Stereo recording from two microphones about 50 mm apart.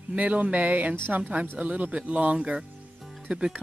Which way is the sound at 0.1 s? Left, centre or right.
Right.